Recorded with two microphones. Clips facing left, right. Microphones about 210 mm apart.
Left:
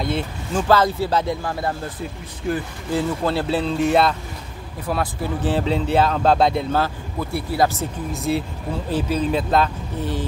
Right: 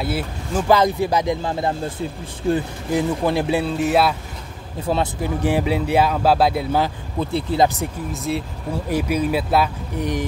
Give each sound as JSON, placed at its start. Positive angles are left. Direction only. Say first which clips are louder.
{"t": 0.0, "sound": "speech", "louder": "even", "side_deg": -5}
{"t": 2.9, "sound": "speech", "louder": "right 2 dB", "side_deg": -15}
{"t": 4.8, "sound": "speech", "louder": "right 3 dB", "side_deg": -25}
{"t": 5.4, "sound": "speech", "louder": "right 1 dB", "side_deg": -10}
{"t": 8.1, "sound": "speech", "louder": "left 4 dB", "side_deg": 0}
{"t": 8.7, "sound": "speech", "louder": "right 1 dB", "side_deg": -10}